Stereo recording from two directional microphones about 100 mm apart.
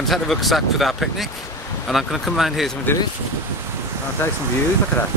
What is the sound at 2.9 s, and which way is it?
Speech, 20° left (ahead or behind).